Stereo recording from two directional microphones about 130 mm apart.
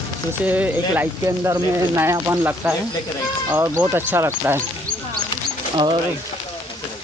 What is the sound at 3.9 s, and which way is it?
Speech, 15° right (ahead or behind).